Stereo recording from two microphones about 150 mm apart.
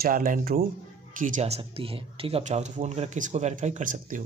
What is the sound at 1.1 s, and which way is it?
Speech, 60° right (ahead or behind).